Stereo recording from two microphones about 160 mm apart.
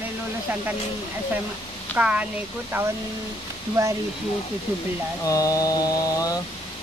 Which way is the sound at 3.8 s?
20° right (ahead or behind).